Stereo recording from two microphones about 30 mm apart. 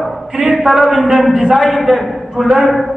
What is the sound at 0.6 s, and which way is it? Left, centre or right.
Speech, centre.